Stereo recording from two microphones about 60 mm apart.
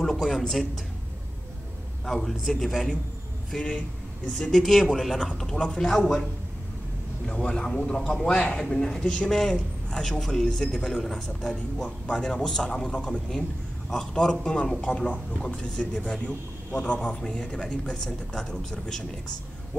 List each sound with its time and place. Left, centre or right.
0.4 s a man's voice: centre
2.0 s a man's voice: centre
5.6 s a man's voice: centre
7.2 s a man's voice: centre